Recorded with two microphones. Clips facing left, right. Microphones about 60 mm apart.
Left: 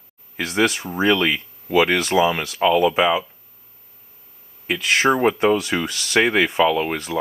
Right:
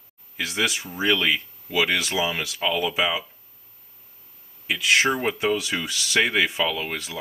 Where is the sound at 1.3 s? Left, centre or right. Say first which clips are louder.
Left 6 dB; left.